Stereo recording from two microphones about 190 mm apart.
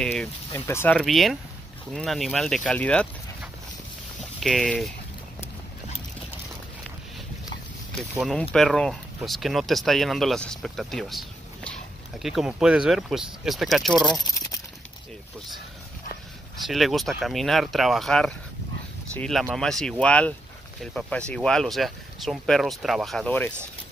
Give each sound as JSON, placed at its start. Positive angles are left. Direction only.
{"t": 0.0, "sound": "speech", "side_deg": 5}
{"t": 4.4, "sound": "speech", "side_deg": 0}
{"t": 7.9, "sound": "speech", "side_deg": 0}
{"t": 16.6, "sound": "speech", "side_deg": 0}